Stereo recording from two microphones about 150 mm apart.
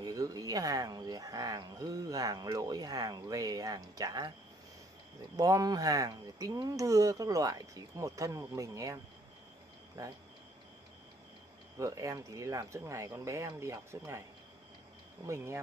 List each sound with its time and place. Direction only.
0.0 s speech: 25° right (ahead or behind)
5.3 s speech: 25° right (ahead or behind)
11.8 s speech: 20° right (ahead or behind)
15.2 s speech: 20° right (ahead or behind)